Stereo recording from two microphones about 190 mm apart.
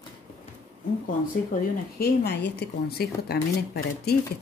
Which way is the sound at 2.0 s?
60° left (ahead or behind).